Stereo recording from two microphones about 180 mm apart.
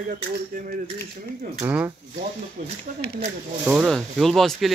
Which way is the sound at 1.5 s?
10° right (ahead or behind).